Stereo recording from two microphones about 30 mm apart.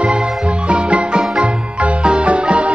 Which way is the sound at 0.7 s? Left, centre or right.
Right.